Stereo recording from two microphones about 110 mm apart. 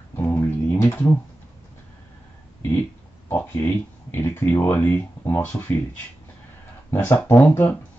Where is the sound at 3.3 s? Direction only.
20° left (ahead or behind).